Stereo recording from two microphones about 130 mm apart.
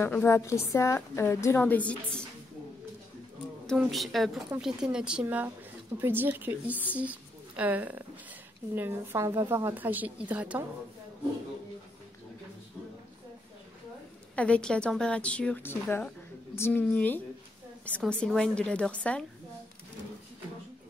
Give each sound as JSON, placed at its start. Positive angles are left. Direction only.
{"t": 0.1, "sound": "a woman's voice", "side_deg": 20}
{"t": 1.6, "sound": "a woman's voice", "side_deg": 10}
{"t": 3.7, "sound": "a woman's voice", "side_deg": 0}
{"t": 14.3, "sound": "a woman's voice", "side_deg": 10}